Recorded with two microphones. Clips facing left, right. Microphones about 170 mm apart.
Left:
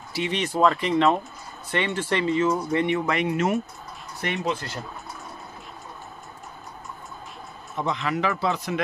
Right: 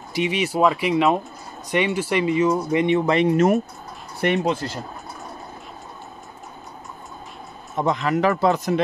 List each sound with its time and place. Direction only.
0.1 s speech: 15° right (ahead or behind)
3.1 s speech: 35° right (ahead or behind)
7.7 s speech: 45° right (ahead or behind)